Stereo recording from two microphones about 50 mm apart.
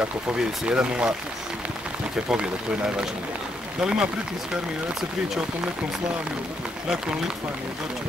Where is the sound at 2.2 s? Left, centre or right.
Centre.